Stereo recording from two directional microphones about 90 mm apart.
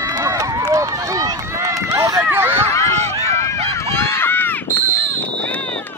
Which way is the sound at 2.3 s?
25° right (ahead or behind).